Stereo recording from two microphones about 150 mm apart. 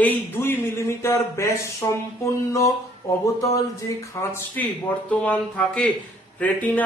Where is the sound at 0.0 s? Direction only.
15° left (ahead or behind).